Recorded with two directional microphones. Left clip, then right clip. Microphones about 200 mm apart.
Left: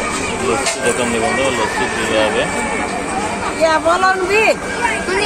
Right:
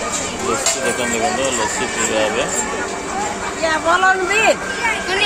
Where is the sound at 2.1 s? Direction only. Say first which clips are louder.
Left 3 dB; 15° right (ahead or behind).